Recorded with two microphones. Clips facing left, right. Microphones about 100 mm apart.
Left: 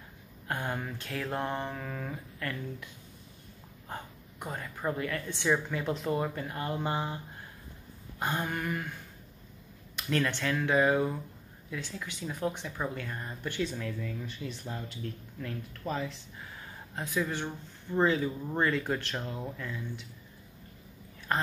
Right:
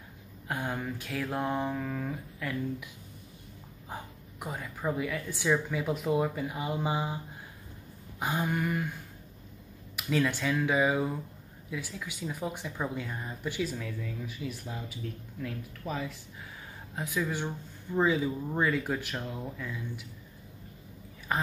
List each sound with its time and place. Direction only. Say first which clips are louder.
0.5 s speech: right 1 dB; centre (ahead or behind)
3.9 s a woman's voice: even; 5° right (ahead or behind)
8.2 s a woman's voice: right 2 dB; 5° right (ahead or behind)
9.9 s speech: right 2 dB; 10° right (ahead or behind)
21.3 s speech: even; 5° right (ahead or behind)